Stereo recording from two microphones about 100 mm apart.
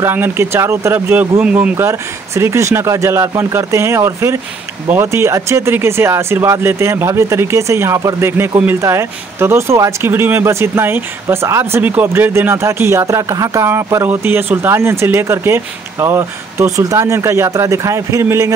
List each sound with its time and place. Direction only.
0.0 s speech: 20° right (ahead or behind)
1.9 s speech: 30° right (ahead or behind)